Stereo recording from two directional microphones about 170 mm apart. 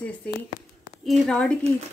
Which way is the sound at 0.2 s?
10° left (ahead or behind).